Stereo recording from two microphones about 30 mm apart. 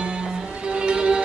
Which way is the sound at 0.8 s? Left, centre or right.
Right.